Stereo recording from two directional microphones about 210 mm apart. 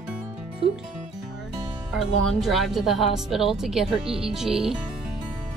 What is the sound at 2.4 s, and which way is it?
Speech, centre (ahead or behind).